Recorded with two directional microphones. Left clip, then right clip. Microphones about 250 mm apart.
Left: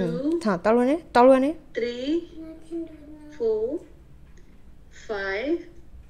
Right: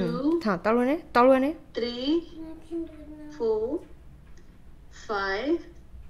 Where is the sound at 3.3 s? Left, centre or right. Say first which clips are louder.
Left 2 dB; right.